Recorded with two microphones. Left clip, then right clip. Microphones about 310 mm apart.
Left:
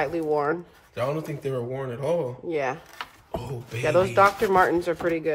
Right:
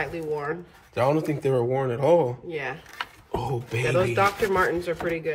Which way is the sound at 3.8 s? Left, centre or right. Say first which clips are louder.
Left 3 dB; centre.